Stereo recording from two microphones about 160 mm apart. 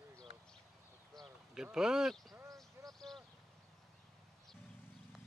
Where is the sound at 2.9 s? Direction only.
Centre (ahead or behind).